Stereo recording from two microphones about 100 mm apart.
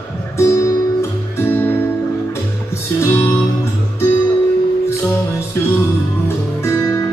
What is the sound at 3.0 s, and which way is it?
Music, 30° left (ahead or behind).